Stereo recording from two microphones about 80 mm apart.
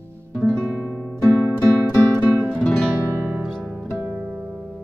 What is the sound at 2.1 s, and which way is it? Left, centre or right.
Music, right.